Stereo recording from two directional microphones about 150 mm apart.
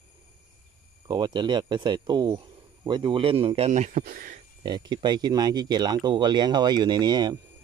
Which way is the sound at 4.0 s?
70° right (ahead or behind).